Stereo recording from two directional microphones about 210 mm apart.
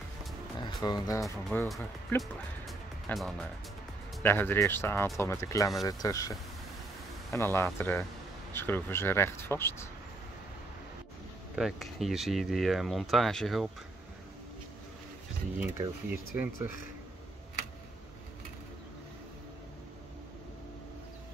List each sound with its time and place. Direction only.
0.6 s speech: 20° left (ahead or behind)
1.2 s speech: 5° left (ahead or behind)
2.6 s music: centre (ahead or behind)
4.2 s speech: 10° left (ahead or behind)
7.3 s speech: 10° left (ahead or behind)
11.5 s speech: centre (ahead or behind)
16.1 s speech: 10° right (ahead or behind)